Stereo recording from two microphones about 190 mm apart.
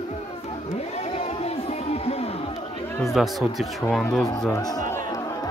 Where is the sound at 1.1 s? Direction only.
35° left (ahead or behind).